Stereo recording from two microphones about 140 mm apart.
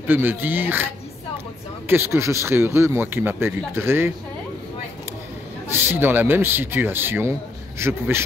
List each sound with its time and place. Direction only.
0.0 s speech: 15° right (ahead or behind)
1.9 s speech: 15° right (ahead or behind)
5.7 s a man's voice: 15° right (ahead or behind)